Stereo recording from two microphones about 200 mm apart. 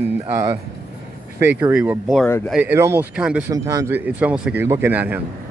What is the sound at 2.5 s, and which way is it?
Speech, 10° right (ahead or behind).